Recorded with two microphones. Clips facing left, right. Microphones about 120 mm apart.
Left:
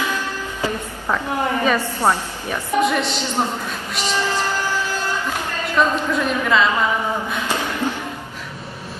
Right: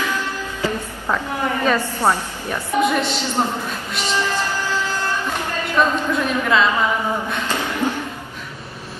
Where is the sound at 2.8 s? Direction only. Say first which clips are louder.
Right 1 dB; centre (ahead or behind).